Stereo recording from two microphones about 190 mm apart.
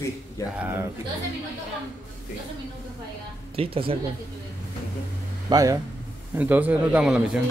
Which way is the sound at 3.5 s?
30° right (ahead or behind).